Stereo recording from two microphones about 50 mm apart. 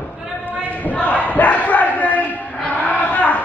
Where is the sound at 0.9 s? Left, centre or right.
Left.